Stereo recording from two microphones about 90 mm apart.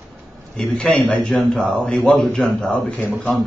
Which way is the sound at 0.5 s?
10° left (ahead or behind).